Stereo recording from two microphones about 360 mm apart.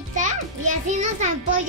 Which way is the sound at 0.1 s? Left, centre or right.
Centre.